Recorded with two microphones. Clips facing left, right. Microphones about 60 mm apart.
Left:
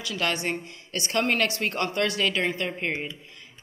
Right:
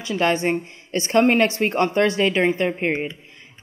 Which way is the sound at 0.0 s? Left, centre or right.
Right.